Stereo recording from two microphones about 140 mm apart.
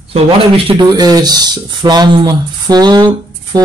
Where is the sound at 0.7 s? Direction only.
30° right (ahead or behind).